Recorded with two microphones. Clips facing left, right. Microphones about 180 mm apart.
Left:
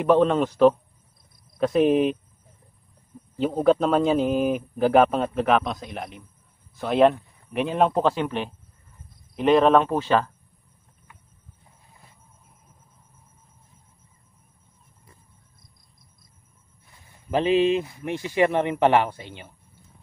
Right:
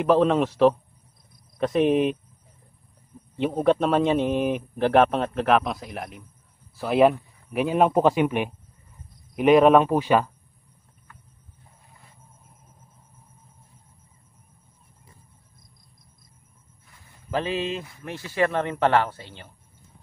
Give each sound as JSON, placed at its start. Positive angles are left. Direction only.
{"t": 0.0, "sound": "a man's voice", "side_deg": 0}
{"t": 3.3, "sound": "a man's voice", "side_deg": 0}
{"t": 17.3, "sound": "speech", "side_deg": 20}